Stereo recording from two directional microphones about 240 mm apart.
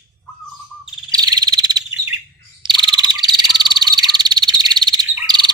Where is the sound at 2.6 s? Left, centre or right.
Centre.